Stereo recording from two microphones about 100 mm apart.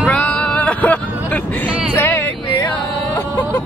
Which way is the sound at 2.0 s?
20° left (ahead or behind).